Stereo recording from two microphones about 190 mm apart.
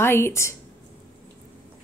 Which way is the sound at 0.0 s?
10° left (ahead or behind).